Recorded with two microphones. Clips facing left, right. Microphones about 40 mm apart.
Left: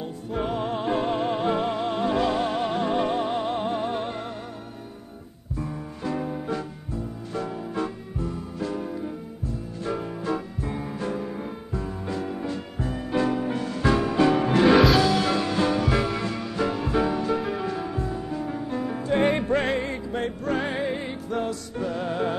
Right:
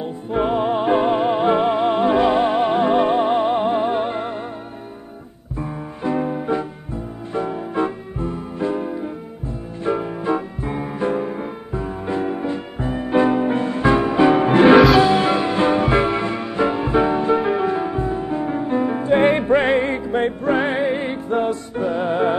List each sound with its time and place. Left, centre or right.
0.0 s music: right
5.6 s music: right